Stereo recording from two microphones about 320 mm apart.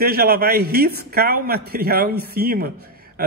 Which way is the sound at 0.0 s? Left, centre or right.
Right.